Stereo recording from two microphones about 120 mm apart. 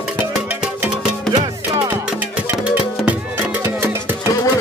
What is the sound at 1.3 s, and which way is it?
Music, 35° right (ahead or behind).